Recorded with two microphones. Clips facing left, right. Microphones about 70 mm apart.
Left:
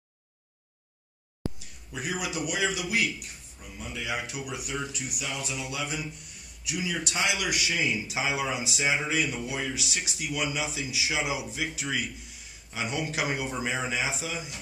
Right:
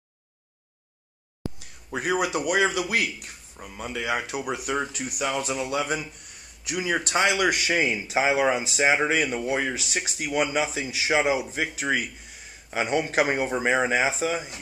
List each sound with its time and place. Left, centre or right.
1.9 s a man's voice: right